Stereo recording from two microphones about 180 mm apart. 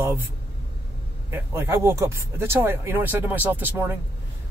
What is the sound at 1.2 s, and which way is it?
Speech, 15° right (ahead or behind).